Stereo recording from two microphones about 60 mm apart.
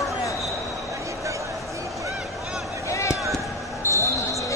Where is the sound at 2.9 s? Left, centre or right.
Left.